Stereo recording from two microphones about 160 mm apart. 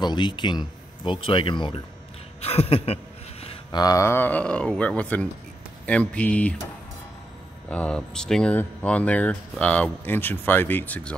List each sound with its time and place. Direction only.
0.0 s speech: 30° left (ahead or behind)
2.4 s a sound: 40° left (ahead or behind)
3.8 s speech: 20° left (ahead or behind)
7.7 s speech: 5° left (ahead or behind)